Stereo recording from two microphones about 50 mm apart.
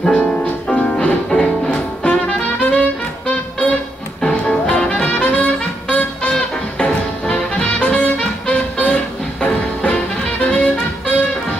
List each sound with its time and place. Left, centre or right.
0.0 s music: centre
2.6 s music: left
4.3 s music: left